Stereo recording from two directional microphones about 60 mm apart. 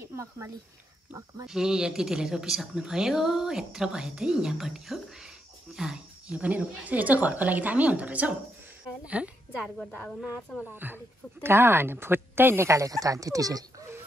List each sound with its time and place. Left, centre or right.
0.0 s a sound: right
1.1 s speech: right
1.5 s a woman's voice: centre
6.3 s a woman's voice: right
10.7 s a woman's voice: right
12.6 s speech: right